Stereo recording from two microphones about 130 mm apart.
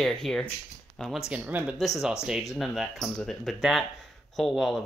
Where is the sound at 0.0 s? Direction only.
Centre (ahead or behind).